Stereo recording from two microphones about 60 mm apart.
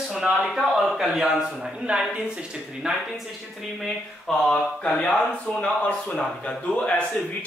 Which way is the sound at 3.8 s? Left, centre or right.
Centre.